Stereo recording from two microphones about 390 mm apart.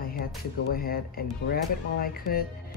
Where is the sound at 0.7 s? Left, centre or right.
Left.